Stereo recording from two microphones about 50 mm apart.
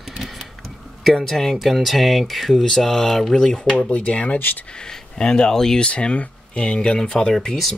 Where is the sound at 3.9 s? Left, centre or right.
Left.